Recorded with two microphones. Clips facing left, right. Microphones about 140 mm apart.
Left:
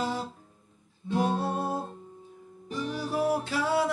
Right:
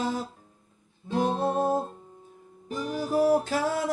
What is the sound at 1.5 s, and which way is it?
Music, 45° right (ahead or behind).